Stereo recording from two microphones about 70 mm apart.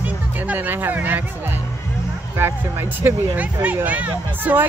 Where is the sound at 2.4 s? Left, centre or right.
Right.